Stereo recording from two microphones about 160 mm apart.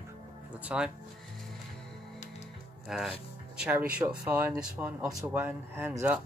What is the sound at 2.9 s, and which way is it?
Speech, centre (ahead or behind).